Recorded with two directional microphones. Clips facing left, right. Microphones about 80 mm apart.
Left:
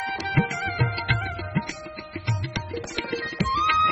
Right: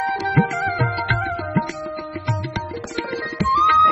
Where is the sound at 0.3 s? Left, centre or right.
Right.